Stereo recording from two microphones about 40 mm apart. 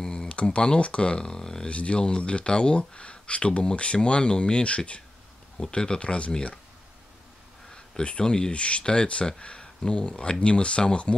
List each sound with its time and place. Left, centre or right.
0.0 s a sound: centre
0.3 s speech: left
1.7 s speech: left
6.3 s speech: centre
7.7 s speech: left